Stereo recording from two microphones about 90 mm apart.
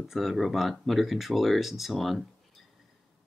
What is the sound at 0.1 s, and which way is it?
Speech, centre (ahead or behind).